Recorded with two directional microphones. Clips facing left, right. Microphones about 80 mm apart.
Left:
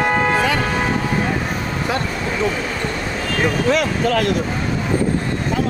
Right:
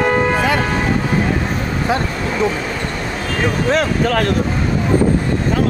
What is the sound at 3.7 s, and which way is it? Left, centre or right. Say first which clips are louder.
Speech: right 3 dB; right.